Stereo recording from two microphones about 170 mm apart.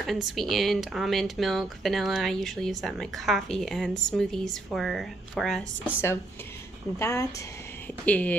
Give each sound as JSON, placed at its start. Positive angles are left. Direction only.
{"t": 0.0, "sound": "speech", "side_deg": 0}
{"t": 7.0, "sound": "speech", "side_deg": 15}